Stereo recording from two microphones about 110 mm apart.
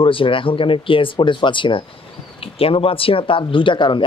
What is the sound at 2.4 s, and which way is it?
Speech, 60° left (ahead or behind).